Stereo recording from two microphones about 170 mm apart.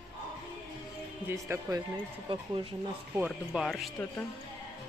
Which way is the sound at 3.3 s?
Centre (ahead or behind).